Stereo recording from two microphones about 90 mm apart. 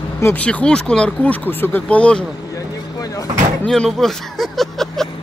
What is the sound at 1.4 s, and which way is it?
Speech, 20° left (ahead or behind).